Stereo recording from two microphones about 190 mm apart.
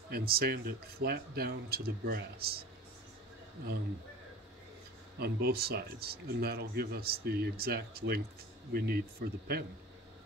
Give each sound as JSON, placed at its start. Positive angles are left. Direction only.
{"t": 0.1, "sound": "speech", "side_deg": -55}
{"t": 5.2, "sound": "speech", "side_deg": -55}